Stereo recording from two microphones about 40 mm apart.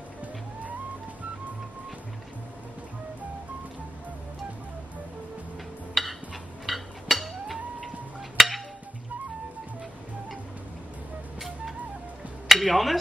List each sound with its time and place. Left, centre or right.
6.0 s a sound: centre
8.4 s music: centre
12.5 s speech: centre